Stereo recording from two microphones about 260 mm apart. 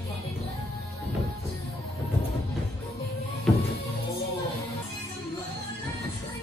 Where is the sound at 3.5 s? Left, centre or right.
Centre.